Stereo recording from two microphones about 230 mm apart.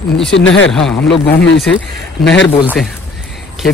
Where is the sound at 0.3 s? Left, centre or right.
Left.